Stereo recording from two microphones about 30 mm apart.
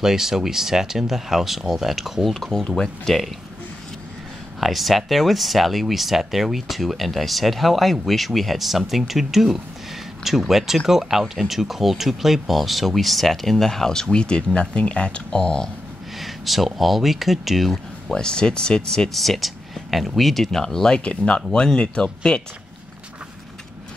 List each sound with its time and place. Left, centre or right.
0.0 s speech: centre
2.8 s speech: centre
4.6 s speech: centre
14.1 s speech: left
16.2 s speech: centre
18.1 s speech: left
19.1 s speech: centre
20.6 s speech: centre
21.0 s speech: left